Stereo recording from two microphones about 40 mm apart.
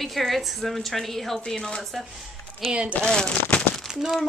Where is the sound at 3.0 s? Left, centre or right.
Centre.